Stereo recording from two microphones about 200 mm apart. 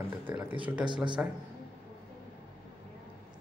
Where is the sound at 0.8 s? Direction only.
25° right (ahead or behind).